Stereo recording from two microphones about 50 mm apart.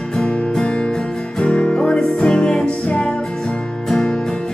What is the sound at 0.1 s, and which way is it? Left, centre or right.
Music, left.